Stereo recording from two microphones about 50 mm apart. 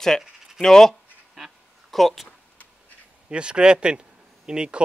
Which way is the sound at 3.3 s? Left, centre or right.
Centre.